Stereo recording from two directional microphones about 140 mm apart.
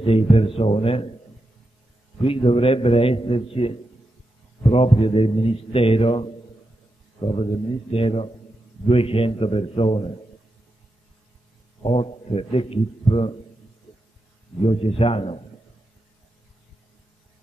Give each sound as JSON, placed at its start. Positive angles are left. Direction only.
{"t": 0.0, "sound": "a man's voice", "side_deg": 40}
{"t": 2.2, "sound": "a man's voice", "side_deg": 40}
{"t": 7.9, "sound": "a man's voice", "side_deg": 40}
{"t": 11.8, "sound": "a man's voice", "side_deg": 40}
{"t": 14.6, "sound": "a man's voice", "side_deg": 40}